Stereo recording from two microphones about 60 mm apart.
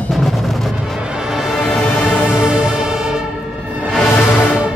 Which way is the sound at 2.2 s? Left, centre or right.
Centre.